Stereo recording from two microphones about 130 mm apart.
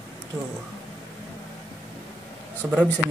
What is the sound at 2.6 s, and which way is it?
Speech, 5° right (ahead or behind).